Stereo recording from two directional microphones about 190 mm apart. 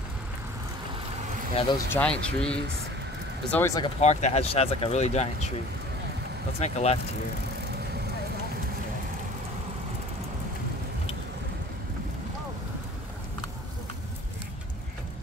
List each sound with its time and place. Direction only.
1.5 s speech: 30° left (ahead or behind)
1.9 s speech: 5° left (ahead or behind)
3.8 s speech: 35° left (ahead or behind)
6.6 s speech: 35° left (ahead or behind)